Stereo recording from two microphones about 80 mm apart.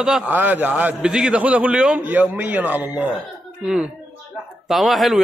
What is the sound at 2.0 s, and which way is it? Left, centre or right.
A man's voice, right.